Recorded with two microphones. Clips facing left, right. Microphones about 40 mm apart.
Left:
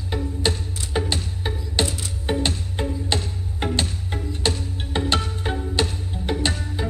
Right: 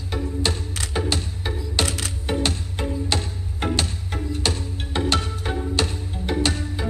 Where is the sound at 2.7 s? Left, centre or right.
Left.